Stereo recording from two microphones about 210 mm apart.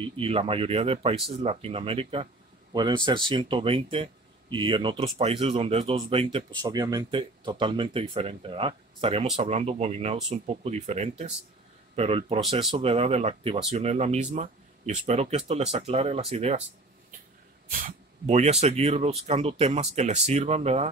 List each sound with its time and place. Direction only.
0.0 s speech: 25° right (ahead or behind)
17.6 s speech: 35° right (ahead or behind)